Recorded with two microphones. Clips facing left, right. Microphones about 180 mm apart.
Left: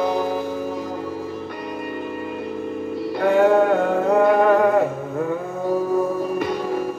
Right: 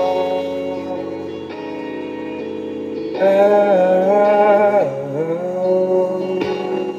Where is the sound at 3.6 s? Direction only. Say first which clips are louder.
Right 6 dB; 20° right (ahead or behind).